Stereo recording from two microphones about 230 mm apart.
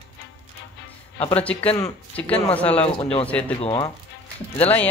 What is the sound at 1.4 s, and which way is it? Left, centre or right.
Speech, centre.